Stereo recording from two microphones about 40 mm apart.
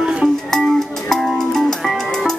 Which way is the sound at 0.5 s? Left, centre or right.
Centre.